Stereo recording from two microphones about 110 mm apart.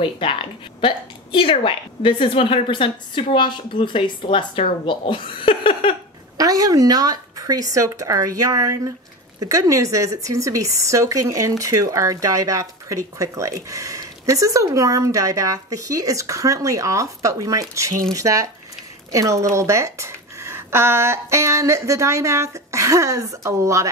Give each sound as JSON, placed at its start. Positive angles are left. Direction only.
{"t": 0.0, "sound": "a woman's voice", "side_deg": 50}
{"t": 6.3, "sound": "speech", "side_deg": -30}